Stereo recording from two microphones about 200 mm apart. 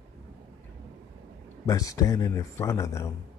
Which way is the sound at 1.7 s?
15° left (ahead or behind).